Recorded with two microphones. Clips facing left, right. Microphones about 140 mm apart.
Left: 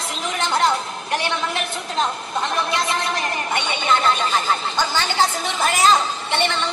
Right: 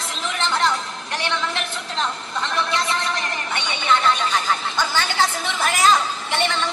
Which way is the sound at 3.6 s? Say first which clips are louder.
Right 1 dB; 35° left (ahead or behind).